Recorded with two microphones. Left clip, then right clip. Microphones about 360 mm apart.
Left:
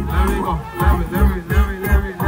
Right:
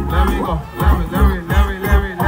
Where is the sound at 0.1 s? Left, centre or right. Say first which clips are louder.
Right 1 dB; centre.